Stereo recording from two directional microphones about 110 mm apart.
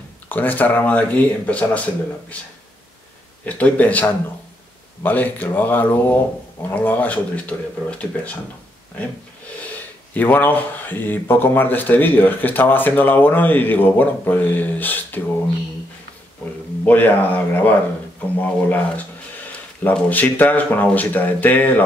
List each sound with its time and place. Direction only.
0.3 s speech: 15° left (ahead or behind)
3.4 s speech: 15° left (ahead or behind)
9.7 s speech: 15° left (ahead or behind)
16.8 s speech: 15° left (ahead or behind)